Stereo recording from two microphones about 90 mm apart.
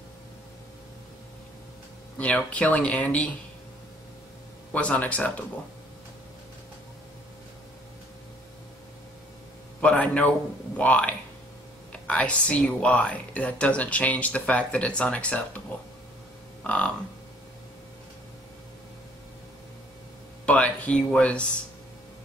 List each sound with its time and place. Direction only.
2.1 s speech: 15° left (ahead or behind)
4.7 s speech: 15° left (ahead or behind)
9.8 s speech: 15° left (ahead or behind)
16.6 s speech: 15° left (ahead or behind)
20.4 s speech: 15° left (ahead or behind)